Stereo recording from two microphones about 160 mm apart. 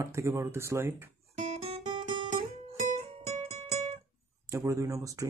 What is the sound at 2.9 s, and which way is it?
Music, 40° right (ahead or behind).